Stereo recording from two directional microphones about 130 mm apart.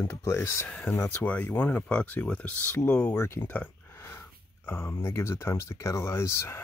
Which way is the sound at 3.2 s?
20° left (ahead or behind).